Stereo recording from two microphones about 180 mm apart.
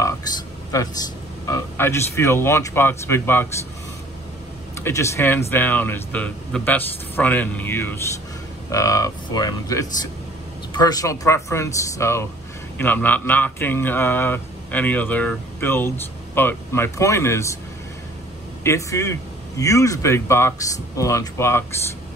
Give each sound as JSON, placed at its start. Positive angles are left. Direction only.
{"t": 0.7, "sound": "a man's voice", "side_deg": 20}
{"t": 4.7, "sound": "a man's voice", "side_deg": 15}
{"t": 18.6, "sound": "a man's voice", "side_deg": 15}